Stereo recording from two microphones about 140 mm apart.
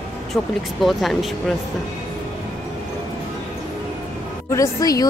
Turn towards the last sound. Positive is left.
turn(degrees=25)  # may be behind; listen again after turning